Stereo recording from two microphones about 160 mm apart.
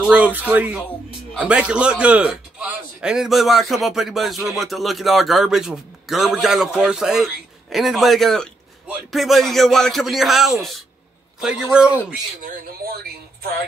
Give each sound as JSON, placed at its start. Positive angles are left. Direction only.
{"t": 0.1, "sound": "a man's voice", "side_deg": -10}
{"t": 12.4, "sound": "speech", "side_deg": -70}